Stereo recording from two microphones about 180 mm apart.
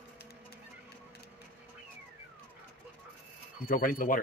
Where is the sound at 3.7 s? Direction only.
50° left (ahead or behind).